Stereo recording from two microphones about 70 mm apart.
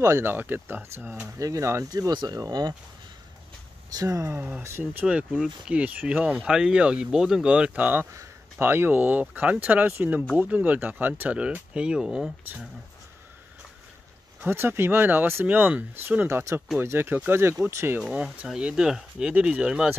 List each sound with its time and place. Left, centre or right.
0.2 s speech: right
1.2 s speech: right
1.9 s speech: right
3.9 s speech: right
4.3 s speech: right
5.7 s speech: centre
8.9 s speech: right
14.4 s speech: right
16.3 s speech: right
18.2 s speech: centre